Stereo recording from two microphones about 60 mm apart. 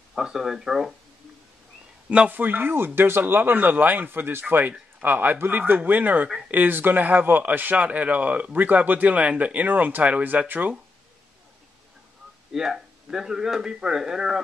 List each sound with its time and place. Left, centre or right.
0.1 s speech: centre
2.0 s speech: centre
2.3 s a man's voice: right
12.5 s speech: centre